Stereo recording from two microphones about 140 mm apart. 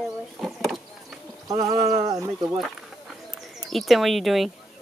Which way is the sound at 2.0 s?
30° right (ahead or behind).